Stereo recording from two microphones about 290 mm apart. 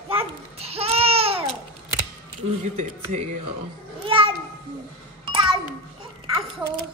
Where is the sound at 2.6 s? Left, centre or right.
Right.